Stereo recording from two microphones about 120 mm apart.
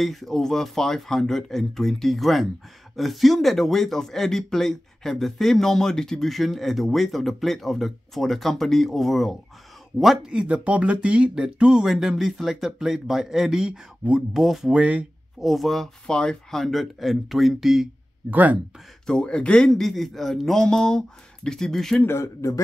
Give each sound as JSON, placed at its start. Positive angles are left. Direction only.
{"t": 0.0, "sound": "speech", "side_deg": 0}
{"t": 18.3, "sound": "speech", "side_deg": -15}
{"t": 19.0, "sound": "speech", "side_deg": 5}
{"t": 22.0, "sound": "a man's voice", "side_deg": 25}